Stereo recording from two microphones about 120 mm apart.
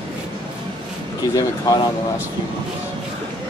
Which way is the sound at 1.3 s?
30° left (ahead or behind).